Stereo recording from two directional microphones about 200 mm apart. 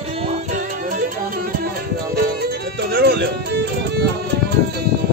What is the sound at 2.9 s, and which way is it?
Music, 55° right (ahead or behind).